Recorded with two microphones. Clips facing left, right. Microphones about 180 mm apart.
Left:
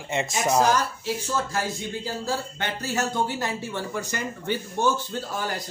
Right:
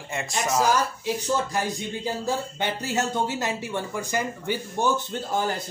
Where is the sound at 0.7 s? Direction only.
15° right (ahead or behind).